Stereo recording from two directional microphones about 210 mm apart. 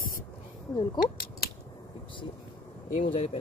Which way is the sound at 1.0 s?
45° left (ahead or behind).